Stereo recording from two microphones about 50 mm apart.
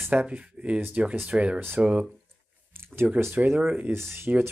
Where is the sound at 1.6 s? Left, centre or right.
Right.